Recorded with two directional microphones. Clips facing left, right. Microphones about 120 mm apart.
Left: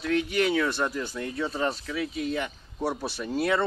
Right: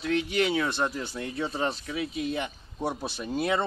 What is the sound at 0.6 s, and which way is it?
Speech, 20° right (ahead or behind).